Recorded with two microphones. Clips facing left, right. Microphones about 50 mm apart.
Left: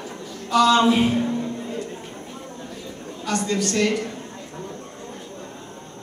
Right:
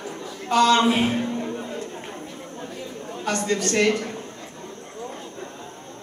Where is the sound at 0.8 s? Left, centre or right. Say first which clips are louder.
Left 2 dB; right.